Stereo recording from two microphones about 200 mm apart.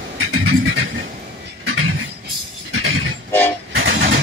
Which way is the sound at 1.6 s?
85° right.